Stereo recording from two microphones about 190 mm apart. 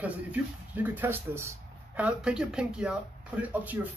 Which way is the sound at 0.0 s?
10° right (ahead or behind).